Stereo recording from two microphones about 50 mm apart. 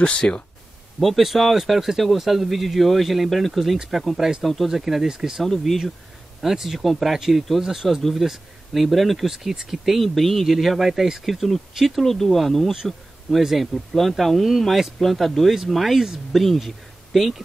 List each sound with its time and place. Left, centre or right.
0.0 s speech: centre
0.9 s speech: centre
4.0 s speech: centre
4.6 s speech: centre
5.4 s speech: centre
12.0 s speech: centre